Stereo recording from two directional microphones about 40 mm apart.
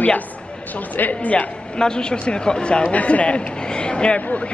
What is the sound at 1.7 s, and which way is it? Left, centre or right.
Speech, left.